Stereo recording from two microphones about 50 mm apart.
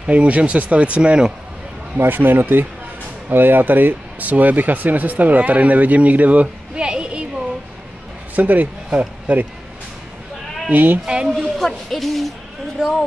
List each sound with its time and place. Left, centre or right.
0.0 s speech: right
2.0 s speech: right
8.4 s speech: right
10.7 s speech: right
11.2 s a woman's voice: centre